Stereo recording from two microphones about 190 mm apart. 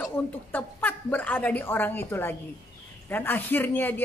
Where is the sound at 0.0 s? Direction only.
10° left (ahead or behind).